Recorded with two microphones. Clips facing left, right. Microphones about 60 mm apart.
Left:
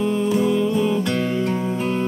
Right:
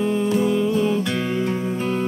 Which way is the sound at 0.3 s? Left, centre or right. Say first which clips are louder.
Left 1 dB; centre.